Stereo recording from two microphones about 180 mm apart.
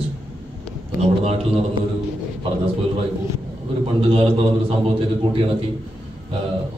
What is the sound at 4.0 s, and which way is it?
Speech, 35° right (ahead or behind).